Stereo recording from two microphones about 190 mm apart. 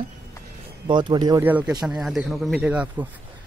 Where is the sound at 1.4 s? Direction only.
10° right (ahead or behind).